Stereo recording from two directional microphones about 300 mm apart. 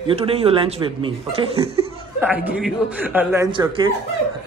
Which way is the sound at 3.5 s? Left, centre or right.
Centre.